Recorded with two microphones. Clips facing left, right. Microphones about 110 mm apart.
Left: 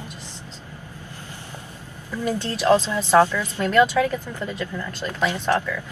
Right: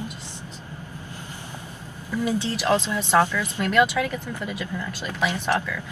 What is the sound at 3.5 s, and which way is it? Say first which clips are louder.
Speech: left 3 dB; 10° right (ahead or behind).